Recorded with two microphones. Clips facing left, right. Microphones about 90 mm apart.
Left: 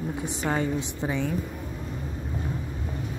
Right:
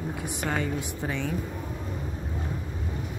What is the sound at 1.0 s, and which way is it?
Speech, 15° left (ahead or behind).